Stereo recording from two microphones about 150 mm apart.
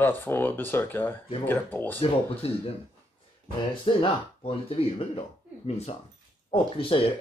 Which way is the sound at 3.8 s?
35° left (ahead or behind).